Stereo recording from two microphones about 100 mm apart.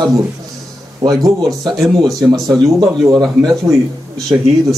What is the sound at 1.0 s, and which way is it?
Speech, 35° right (ahead or behind).